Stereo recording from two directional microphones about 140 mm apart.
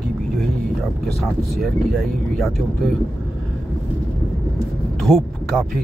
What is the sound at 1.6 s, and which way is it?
Speech, centre (ahead or behind).